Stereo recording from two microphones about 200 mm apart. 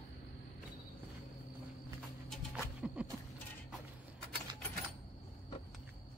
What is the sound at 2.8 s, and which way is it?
Music, 5° right (ahead or behind).